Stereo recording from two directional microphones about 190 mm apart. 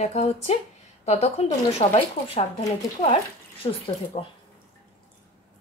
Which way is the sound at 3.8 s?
30° left (ahead or behind).